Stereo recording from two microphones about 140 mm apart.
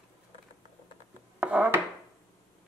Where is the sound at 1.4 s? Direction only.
10° right (ahead or behind).